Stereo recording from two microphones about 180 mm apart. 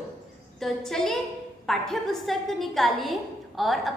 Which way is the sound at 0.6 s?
Centre (ahead or behind).